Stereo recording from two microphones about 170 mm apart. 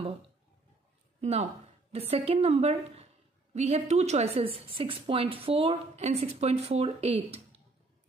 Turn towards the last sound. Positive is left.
turn(degrees=-35)  # may be behind; listen again after turning